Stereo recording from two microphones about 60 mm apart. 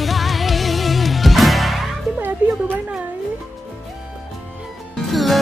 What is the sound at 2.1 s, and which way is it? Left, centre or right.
Music, right.